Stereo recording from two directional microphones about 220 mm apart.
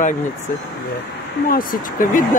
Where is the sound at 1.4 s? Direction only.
40° left (ahead or behind).